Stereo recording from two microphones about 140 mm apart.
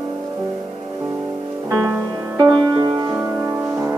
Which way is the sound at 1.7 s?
25° right (ahead or behind).